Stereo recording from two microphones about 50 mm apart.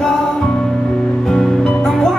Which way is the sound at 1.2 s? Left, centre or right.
Centre.